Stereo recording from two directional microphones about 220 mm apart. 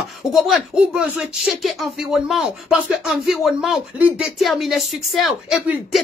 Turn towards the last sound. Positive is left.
turn(degrees=0)  # may be behind; listen again after turning